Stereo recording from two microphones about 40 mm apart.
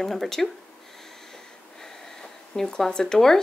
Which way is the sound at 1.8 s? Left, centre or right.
Centre.